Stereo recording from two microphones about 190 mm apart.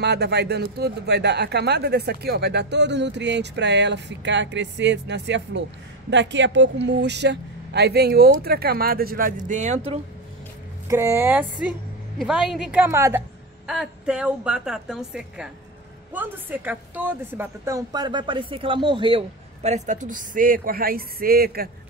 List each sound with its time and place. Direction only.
0.0 s speech: 60° right (ahead or behind); by 9.8 s 40° right (ahead or behind)
10.9 s a woman's voice: 15° right (ahead or behind)
13.7 s a woman's voice: 5° right (ahead or behind); by 21.6 s 55° right (ahead or behind)